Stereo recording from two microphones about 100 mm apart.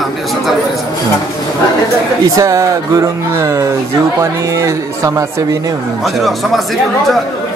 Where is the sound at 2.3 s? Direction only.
35° right (ahead or behind).